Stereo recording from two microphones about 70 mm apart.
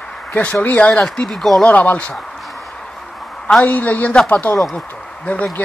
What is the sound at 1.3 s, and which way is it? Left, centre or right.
Speech, centre.